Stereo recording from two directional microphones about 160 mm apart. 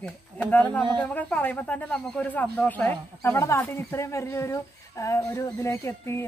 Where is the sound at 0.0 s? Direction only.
10° left (ahead or behind).